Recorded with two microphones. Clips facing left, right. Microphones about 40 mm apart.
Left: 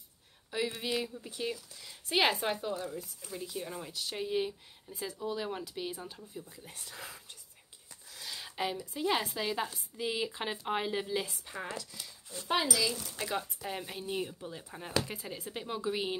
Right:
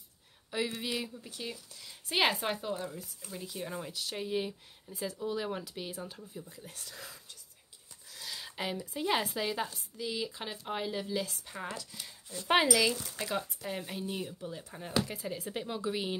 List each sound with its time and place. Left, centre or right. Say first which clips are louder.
0.5 s speech: left 1 dB; centre; by 7.2 s left
8.1 s a sound: even; centre
8.7 s speech: right 2 dB; centre
9.9 s speech: left 2 dB; left
11.4 s speech: even; centre
12.4 s speech: right 5 dB; right
13.2 s speech: left 2 dB; centre